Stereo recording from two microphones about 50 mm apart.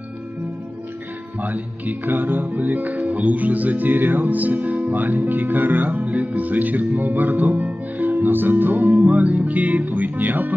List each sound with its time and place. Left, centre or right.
1.4 s speech: right